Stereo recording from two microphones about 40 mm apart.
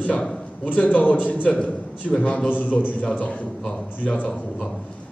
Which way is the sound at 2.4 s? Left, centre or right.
Left.